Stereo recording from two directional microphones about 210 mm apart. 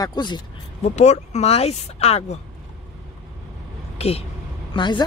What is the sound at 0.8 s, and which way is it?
Speech, 35° left (ahead or behind).